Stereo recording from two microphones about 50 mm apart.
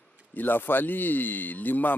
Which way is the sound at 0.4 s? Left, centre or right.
Left.